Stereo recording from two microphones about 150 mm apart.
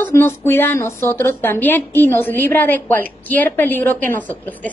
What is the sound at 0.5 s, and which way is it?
A woman's voice, 15° left (ahead or behind).